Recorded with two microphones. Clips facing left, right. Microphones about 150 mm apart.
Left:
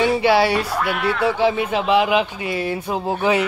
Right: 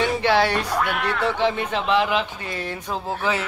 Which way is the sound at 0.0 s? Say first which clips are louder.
Left 4 dB; 10° left (ahead or behind).